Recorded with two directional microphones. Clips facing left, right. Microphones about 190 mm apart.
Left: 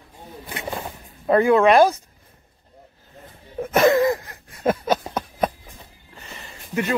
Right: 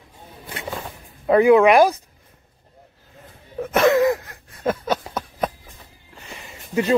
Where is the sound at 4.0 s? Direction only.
5° right (ahead or behind).